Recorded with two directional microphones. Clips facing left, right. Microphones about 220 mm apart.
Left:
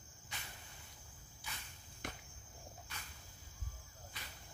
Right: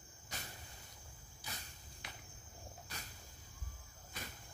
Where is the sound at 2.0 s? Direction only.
50° left (ahead or behind).